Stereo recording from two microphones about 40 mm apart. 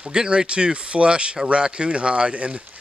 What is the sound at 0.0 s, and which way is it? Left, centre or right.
Speech, centre.